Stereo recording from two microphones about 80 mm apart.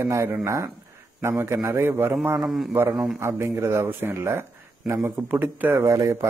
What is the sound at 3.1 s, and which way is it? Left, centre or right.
A man's voice, right.